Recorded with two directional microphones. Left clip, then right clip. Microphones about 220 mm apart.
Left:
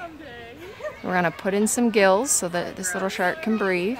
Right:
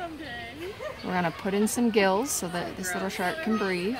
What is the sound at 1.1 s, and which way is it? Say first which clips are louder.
A woman's voice: left 6 dB; 35° left (ahead or behind).